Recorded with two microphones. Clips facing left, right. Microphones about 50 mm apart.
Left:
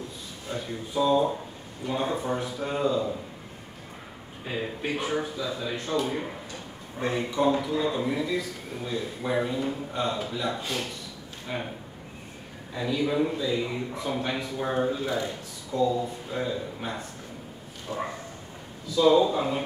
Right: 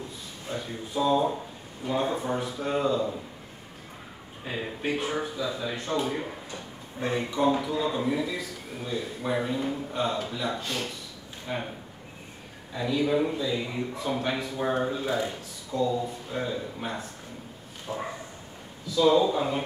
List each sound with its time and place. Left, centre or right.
0.5 s speech: centre
4.5 s speech: centre
12.7 s speech: centre
17.9 s dog: centre
18.9 s speech: centre